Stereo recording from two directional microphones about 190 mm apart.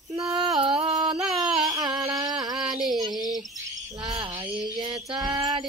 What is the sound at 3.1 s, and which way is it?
Bird, centre (ahead or behind).